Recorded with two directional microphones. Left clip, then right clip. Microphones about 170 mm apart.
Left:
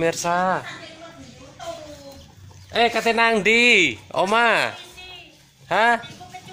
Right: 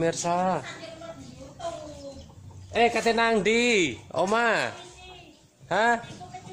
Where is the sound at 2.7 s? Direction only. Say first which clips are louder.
Left 3 dB; 10° left (ahead or behind).